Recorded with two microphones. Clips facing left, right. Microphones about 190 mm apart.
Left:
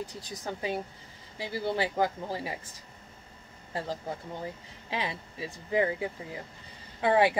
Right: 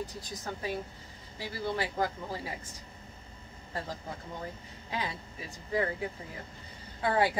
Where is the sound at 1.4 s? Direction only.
25° left (ahead or behind).